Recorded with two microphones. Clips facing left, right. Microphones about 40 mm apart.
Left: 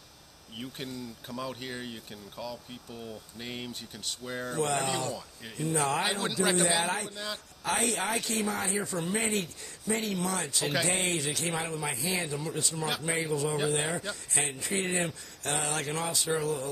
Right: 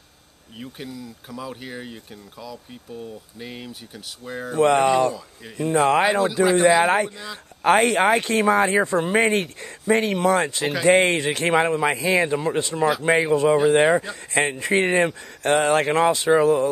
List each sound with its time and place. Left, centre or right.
0.6 s speech: centre
4.6 s speech: right